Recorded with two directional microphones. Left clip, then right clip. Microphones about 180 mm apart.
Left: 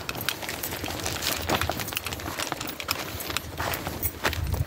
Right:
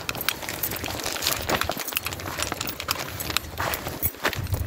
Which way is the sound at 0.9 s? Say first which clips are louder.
Right 3 dB; 30° right (ahead or behind).